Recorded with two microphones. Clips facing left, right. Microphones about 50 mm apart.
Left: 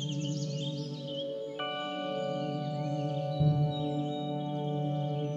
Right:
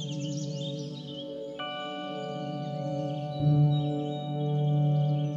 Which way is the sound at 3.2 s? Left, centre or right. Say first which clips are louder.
Right 4 dB; centre.